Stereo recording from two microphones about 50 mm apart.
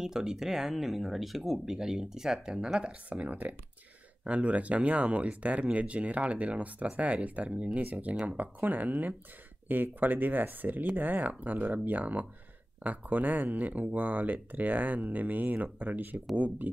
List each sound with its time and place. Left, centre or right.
0.0 s speech: centre; by 16.7 s right